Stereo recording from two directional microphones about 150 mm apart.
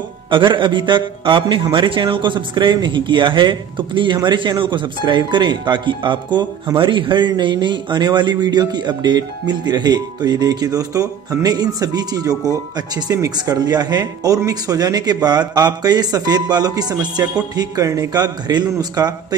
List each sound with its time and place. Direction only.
0.3 s a man's voice: 35° right (ahead or behind)